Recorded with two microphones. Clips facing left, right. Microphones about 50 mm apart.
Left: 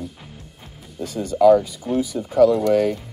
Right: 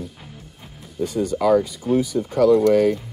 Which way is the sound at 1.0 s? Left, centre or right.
Centre.